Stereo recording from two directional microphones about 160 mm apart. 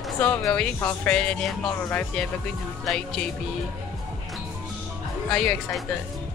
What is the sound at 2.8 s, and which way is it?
Speech, centre (ahead or behind).